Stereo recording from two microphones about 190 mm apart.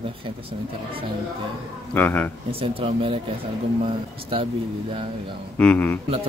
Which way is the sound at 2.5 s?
30° right (ahead or behind).